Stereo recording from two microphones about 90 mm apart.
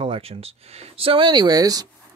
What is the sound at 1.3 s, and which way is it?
Speech, 45° right (ahead or behind).